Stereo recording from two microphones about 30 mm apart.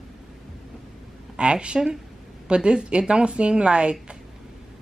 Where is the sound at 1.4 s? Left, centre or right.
Right.